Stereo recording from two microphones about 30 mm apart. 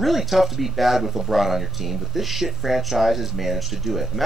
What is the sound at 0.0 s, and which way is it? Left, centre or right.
Speech, centre.